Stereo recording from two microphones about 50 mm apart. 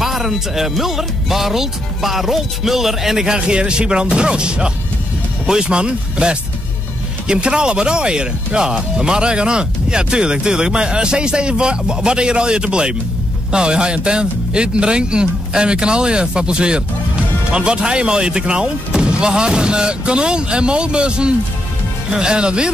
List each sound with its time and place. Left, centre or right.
0.0 s speech: centre
3.3 s speech: centre